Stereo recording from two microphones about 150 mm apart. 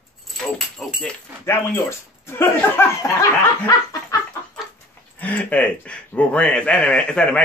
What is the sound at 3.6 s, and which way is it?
Chicken, 20° left (ahead or behind).